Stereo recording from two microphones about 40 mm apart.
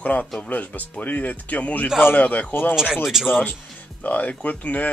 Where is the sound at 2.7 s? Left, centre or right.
Centre.